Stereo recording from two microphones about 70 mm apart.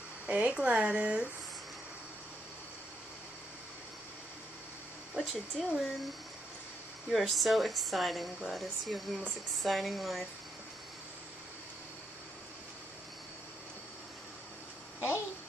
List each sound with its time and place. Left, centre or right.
0.3 s speech: centre
5.1 s speech: centre
7.1 s speech: centre